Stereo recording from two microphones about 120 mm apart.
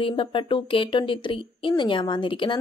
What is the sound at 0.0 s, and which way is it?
Speech, 45° left (ahead or behind).